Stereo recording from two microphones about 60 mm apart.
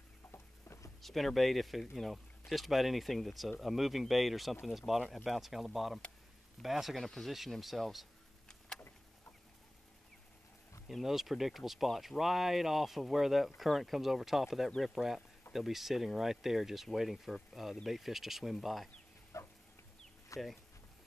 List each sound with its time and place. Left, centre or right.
0.3 s patter: left
1.0 s speech: centre
8.5 s a sound: centre
10.9 s speech: centre
19.3 s a sound: left
20.3 s speech: left